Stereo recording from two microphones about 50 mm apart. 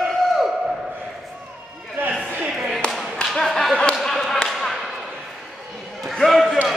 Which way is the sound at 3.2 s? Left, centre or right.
Centre.